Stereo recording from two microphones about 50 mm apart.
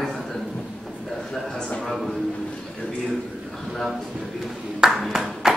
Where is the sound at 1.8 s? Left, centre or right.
Centre.